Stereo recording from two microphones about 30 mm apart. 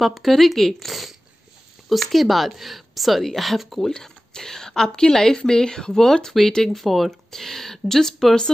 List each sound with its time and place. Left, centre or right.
0.0 s a woman's voice: centre
3.9 s speech: centre
6.8 s a woman's voice: centre